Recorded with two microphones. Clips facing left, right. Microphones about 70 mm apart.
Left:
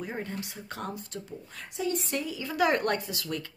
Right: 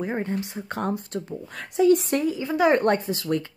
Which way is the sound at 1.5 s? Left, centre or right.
Right.